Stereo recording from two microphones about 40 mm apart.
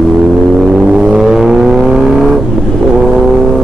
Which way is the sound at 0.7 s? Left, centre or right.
Centre.